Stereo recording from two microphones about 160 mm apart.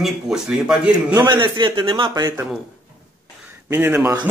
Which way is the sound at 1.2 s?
30° right (ahead or behind).